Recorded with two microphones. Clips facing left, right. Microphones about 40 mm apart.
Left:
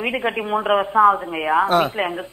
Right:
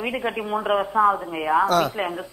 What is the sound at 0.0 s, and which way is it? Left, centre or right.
Speech, left.